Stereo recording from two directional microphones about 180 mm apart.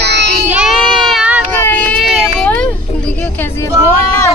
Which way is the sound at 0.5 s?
Centre (ahead or behind).